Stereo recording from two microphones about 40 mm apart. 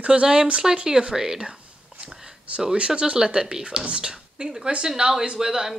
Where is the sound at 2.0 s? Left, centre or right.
Centre.